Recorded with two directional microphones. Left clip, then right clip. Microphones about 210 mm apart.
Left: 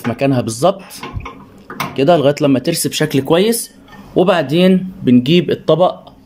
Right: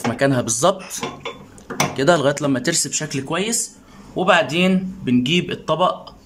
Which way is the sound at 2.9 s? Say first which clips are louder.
Left 10 dB; 20° left (ahead or behind).